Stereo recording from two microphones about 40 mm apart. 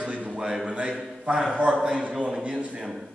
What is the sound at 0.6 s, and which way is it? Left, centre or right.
A man's voice, right.